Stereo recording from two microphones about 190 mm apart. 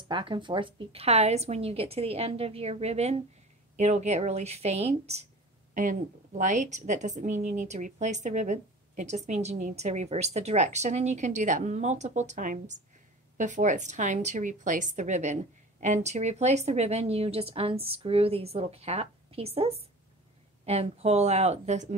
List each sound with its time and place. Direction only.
0.1 s a woman's voice: 25° right (ahead or behind)